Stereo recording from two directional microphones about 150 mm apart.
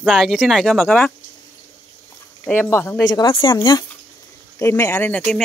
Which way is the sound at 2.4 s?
15° left (ahead or behind).